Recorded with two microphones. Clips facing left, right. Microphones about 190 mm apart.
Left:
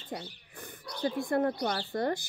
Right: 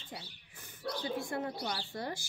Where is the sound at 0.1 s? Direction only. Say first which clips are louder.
Left 9 dB; 55° left (ahead or behind).